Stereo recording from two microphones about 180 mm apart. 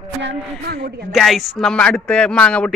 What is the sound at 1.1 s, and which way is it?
Speech, centre (ahead or behind).